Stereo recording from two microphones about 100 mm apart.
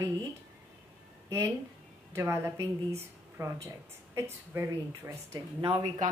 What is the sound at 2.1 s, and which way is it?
Speech, 25° right (ahead or behind).